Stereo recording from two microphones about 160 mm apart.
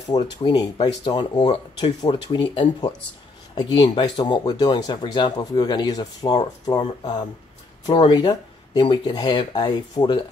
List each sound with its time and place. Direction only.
0.1 s speech: 25° left (ahead or behind)